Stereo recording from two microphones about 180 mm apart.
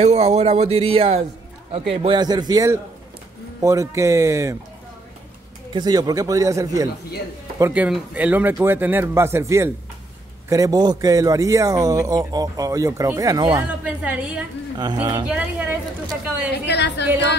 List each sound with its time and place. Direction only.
0.0 s speech: 35° right (ahead or behind); by 4.6 s 15° right (ahead or behind)
5.7 s speech: 20° right (ahead or behind)
7.7 s speech: 5° right (ahead or behind)
13.5 s speech: 10° right (ahead or behind)
14.8 s speech: 25° right (ahead or behind)
15.2 s speech: 10° right (ahead or behind)
16.6 s a woman's voice: 70° left (ahead or behind)